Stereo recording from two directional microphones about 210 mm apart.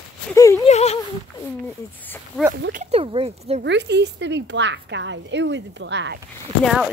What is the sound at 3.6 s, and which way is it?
A woman's voice, 55° right (ahead or behind).